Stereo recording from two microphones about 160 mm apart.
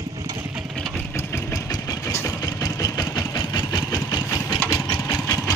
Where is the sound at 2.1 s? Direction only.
20° left (ahead or behind).